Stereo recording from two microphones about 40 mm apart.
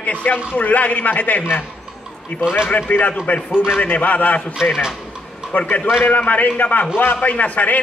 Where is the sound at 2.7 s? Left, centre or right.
Left.